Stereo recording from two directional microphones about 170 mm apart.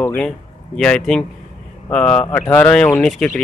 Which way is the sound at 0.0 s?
10° left (ahead or behind).